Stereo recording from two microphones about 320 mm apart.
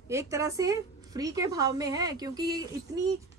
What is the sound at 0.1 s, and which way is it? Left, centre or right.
A woman's voice, centre.